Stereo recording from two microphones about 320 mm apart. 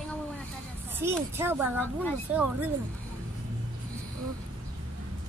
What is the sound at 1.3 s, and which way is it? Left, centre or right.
Speech, centre.